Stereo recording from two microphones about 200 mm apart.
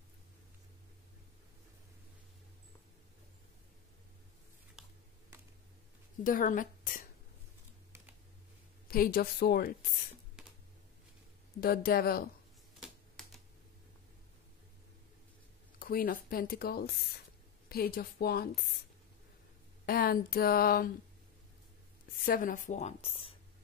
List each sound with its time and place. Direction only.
4.8 s a sound: 5° right (ahead or behind)
6.2 s speech: 40° left (ahead or behind)
8.8 s speech: 50° left (ahead or behind)
11.6 s speech: 50° left (ahead or behind)
15.8 s speech: 45° left (ahead or behind)
19.9 s speech: 45° left (ahead or behind)
22.2 s a woman's voice: 45° left (ahead or behind)